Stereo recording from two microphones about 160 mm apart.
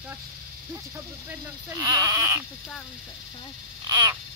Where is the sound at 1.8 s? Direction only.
20° right (ahead or behind).